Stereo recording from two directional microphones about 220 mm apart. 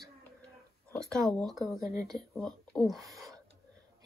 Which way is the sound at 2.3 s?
5° left (ahead or behind).